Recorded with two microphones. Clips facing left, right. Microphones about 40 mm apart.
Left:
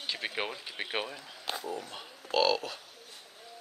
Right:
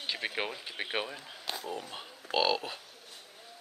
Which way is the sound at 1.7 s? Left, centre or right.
Right.